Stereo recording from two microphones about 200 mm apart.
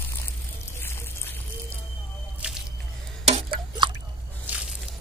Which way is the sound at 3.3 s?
25° right (ahead or behind).